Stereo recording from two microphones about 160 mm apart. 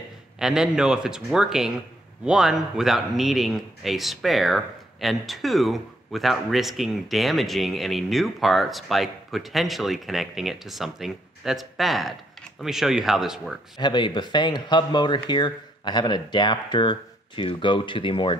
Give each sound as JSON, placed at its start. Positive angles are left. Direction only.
{"t": 0.4, "sound": "speech", "side_deg": -5}
{"t": 13.7, "sound": "speech", "side_deg": 30}